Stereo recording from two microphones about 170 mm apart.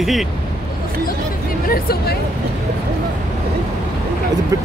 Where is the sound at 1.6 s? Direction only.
60° left (ahead or behind).